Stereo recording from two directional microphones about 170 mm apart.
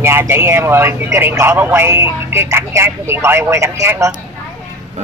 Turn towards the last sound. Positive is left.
turn(degrees=-15)  # may be behind; listen again after turning